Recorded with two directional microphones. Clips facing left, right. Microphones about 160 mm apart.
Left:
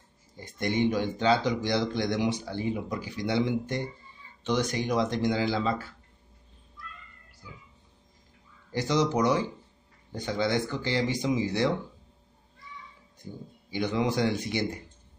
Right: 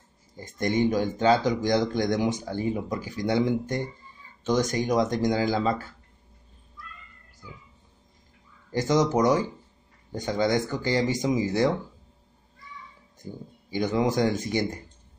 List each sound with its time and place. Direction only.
0.4 s speech: 45° right (ahead or behind)
8.7 s speech: 45° right (ahead or behind)
13.2 s speech: 45° right (ahead or behind)